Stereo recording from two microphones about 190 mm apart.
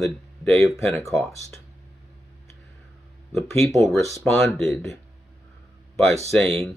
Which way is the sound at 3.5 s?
15° left (ahead or behind).